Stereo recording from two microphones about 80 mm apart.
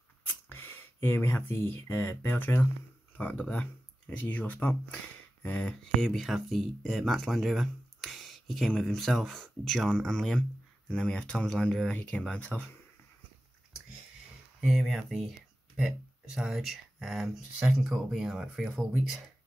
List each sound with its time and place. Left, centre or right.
0.5 s speech: left
5.9 s speech: centre
14.7 s speech: centre
16.3 s speech: centre